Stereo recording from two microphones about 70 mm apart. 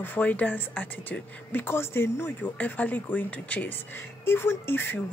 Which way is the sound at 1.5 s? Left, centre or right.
Left.